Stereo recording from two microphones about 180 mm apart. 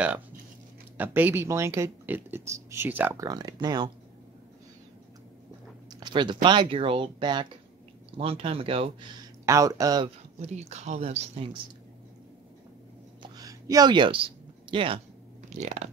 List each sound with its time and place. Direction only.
0.9 s speech: 10° right (ahead or behind)
5.9 s speech: 25° right (ahead or behind)
9.5 s speech: 20° right (ahead or behind)
10.0 s speech: 35° right (ahead or behind)
13.2 s a sound: 20° right (ahead or behind)
15.5 s speech: 40° right (ahead or behind)